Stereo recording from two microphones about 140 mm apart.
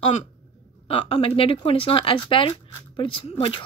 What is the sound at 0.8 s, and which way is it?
Speech, 45° left (ahead or behind).